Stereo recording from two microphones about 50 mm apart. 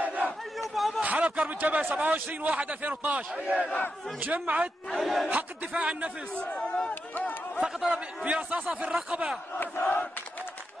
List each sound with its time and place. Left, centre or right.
0.0 s crowd: right
0.6 s a sound: centre
1.0 s a man's voice: right
3.6 s battle cry: left
4.2 s a man's voice: right
4.9 s battle cry: centre
5.3 s a man's voice: right
6.3 s speech: left
7.2 s a sound: left
8.2 s a man's voice: right
9.6 s battle cry: left